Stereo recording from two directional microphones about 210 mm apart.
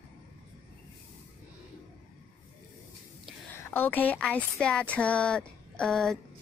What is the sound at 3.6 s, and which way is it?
Speech, 10° left (ahead or behind).